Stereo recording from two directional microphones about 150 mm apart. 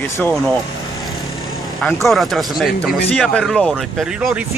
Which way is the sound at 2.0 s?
Centre (ahead or behind).